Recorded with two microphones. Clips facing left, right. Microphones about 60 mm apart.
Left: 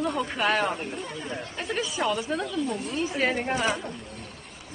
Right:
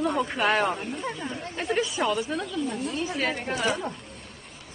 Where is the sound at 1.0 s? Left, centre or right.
Right.